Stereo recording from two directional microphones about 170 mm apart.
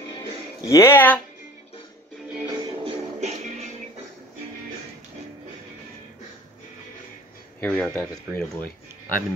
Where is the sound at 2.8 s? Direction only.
35° right (ahead or behind).